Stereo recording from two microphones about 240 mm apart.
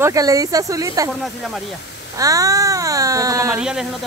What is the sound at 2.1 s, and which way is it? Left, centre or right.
Speech, centre.